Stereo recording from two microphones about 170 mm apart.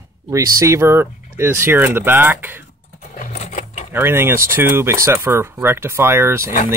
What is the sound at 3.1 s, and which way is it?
Sewing machine, 40° left (ahead or behind).